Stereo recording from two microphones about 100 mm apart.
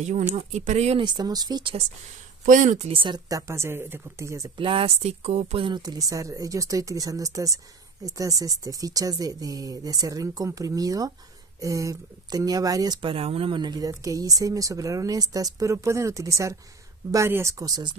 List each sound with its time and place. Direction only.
0.4 s speech: 90° right
1.0 s speech: 45° right (ahead or behind)
2.8 s speech: 65° right (ahead or behind)
3.3 s speech: 30° right (ahead or behind)
4.6 s speech: 65° right (ahead or behind); by 5.7 s 90° right
5.7 s speech: 40° right (ahead or behind)
13.0 s speech: 70° right (ahead or behind)
13.6 s speech: 40° right (ahead or behind)